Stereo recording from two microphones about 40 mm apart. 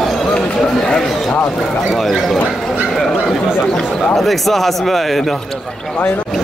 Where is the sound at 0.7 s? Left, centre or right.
Centre.